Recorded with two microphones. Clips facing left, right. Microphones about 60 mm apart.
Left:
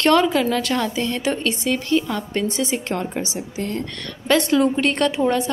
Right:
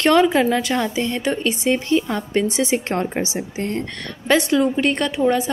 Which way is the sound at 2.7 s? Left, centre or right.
Right.